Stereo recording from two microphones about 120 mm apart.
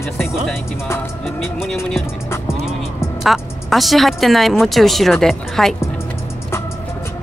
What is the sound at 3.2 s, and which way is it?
Speech, centre (ahead or behind).